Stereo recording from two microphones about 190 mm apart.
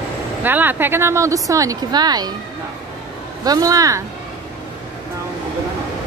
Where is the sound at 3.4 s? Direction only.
20° right (ahead or behind).